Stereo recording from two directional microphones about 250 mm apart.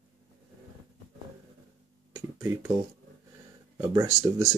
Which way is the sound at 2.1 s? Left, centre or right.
Centre.